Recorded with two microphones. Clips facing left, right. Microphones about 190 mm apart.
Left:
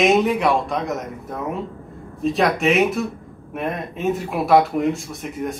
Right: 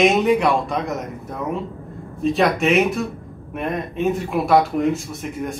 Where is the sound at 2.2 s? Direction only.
Centre (ahead or behind).